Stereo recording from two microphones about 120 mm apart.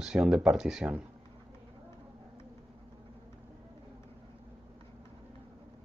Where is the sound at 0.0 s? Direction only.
5° right (ahead or behind).